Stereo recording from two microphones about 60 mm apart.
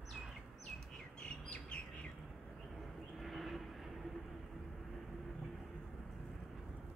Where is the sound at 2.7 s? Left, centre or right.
Centre.